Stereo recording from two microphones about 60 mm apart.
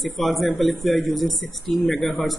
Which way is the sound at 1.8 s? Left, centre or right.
Left.